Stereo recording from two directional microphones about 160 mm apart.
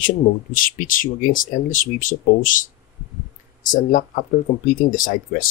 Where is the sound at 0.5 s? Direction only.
60° left (ahead or behind).